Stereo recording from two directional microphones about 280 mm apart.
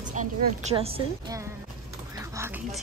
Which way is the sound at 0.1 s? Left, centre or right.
Right.